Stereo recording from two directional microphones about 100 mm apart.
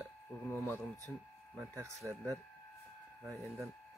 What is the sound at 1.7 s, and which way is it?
Speech, 30° right (ahead or behind).